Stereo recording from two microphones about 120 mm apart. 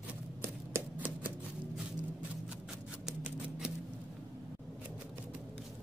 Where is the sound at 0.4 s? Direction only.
20° right (ahead or behind).